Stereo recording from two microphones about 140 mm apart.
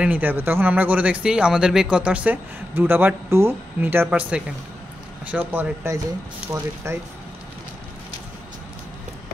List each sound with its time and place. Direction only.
0.0 s speech: 10° right (ahead or behind)